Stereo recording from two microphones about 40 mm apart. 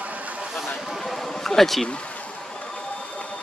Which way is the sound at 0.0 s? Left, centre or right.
Right.